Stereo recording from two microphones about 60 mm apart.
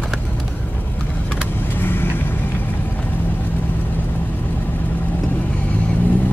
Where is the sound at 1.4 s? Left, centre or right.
Left.